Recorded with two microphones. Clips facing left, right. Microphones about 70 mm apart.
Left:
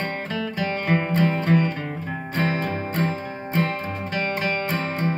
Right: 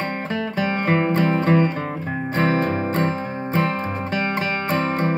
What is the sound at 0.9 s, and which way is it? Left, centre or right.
Music, right.